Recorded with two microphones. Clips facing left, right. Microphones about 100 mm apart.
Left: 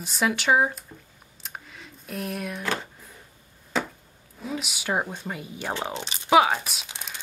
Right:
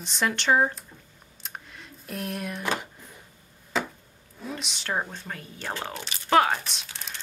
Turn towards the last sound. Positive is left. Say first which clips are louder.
# left 2 dB
turn(degrees=5)  # may be behind; listen again after turning